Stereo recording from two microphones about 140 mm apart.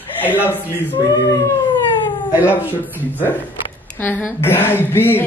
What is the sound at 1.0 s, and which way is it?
Howl, 30° left (ahead or behind).